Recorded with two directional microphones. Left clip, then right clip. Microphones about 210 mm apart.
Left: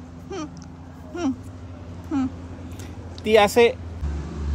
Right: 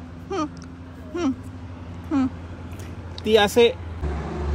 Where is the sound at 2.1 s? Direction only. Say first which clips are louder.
Right 2 dB; 10° left (ahead or behind).